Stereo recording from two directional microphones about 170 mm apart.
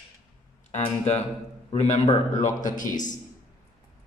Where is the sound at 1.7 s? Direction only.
40° left (ahead or behind).